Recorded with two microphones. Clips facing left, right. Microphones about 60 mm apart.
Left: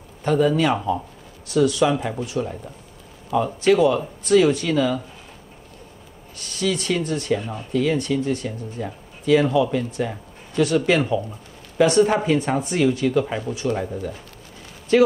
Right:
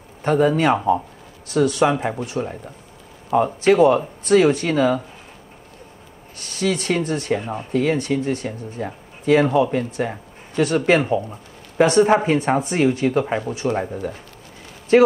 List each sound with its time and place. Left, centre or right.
0.2 s speech: right
6.4 s speech: right
14.9 s speech: right